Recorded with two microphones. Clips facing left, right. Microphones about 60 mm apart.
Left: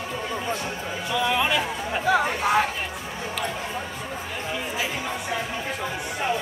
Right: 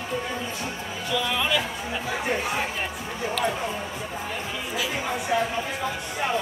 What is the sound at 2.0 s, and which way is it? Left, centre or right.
Speech, left.